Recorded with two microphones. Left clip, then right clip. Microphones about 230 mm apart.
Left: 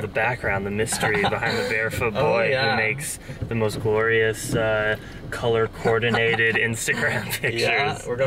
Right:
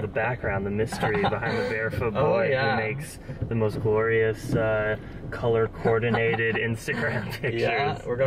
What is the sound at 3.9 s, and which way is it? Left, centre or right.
Speech, centre.